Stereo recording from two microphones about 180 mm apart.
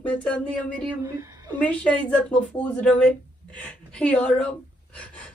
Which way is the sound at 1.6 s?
5° left (ahead or behind).